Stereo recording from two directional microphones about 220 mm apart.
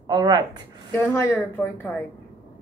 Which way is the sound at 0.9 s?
10° left (ahead or behind).